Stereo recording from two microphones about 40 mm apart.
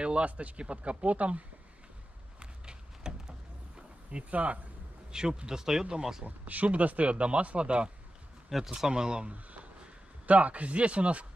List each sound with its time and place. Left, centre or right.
0.0 s speech: right
2.6 s a sound: right
4.3 s speech: right
5.1 s speech: centre
6.2 s speech: right
8.6 s speech: centre
9.3 s a sound: right
10.2 s speech: right